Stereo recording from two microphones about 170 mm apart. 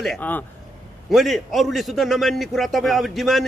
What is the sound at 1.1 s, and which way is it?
A man's voice, centre (ahead or behind).